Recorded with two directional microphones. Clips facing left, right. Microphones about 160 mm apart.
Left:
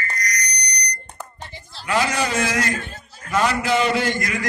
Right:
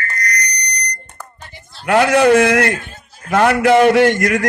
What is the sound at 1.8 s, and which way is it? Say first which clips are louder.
A man's voice: right 11 dB; 60° right (ahead or behind).